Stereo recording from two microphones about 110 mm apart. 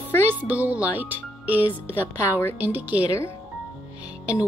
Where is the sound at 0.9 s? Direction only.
15° right (ahead or behind).